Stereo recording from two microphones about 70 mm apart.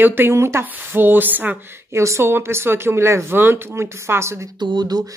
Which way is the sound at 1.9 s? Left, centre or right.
Right.